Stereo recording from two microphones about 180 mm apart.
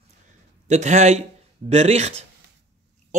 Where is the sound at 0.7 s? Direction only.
40° right (ahead or behind).